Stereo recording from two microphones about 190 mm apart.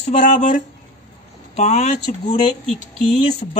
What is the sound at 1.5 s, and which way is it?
A woman's voice, 35° left (ahead or behind).